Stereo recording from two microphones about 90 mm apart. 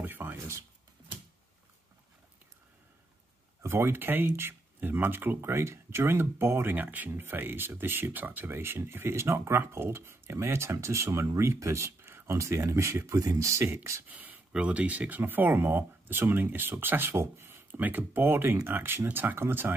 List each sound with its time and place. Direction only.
0.0 s a sound: 20° right (ahead or behind)
3.6 s speech: 25° right (ahead or behind)
14.0 s speech: 20° right (ahead or behind)